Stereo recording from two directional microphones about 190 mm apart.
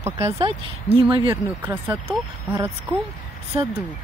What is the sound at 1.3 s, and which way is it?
Speech, 10° right (ahead or behind).